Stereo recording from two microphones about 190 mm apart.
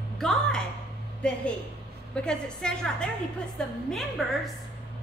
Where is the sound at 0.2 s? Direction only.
5° left (ahead or behind).